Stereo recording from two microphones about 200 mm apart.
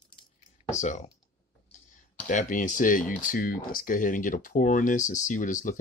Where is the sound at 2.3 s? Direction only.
40° left (ahead or behind).